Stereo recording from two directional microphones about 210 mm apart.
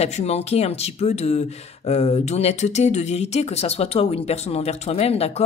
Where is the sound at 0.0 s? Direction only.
30° left (ahead or behind).